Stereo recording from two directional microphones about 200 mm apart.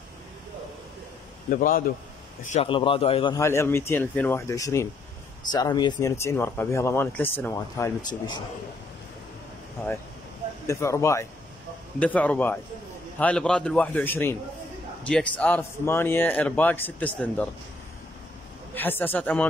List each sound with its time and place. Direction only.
1.5 s a man's voice: 40° left (ahead or behind)
2.5 s a man's voice: 25° left (ahead or behind)
3.4 s speech: 10° left (ahead or behind)
10.7 s speech: 15° left (ahead or behind)
18.8 s speech: 10° left (ahead or behind)